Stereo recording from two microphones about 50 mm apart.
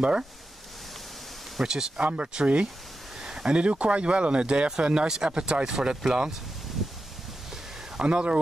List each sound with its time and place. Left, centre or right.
1.6 s speech: centre
2.0 s speech: right
3.2 s a sound: centre
3.5 s speech: right
8.0 s speech: right